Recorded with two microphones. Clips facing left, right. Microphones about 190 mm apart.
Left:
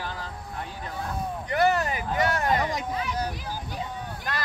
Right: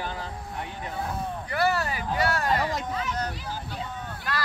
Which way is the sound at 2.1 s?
20° left (ahead or behind).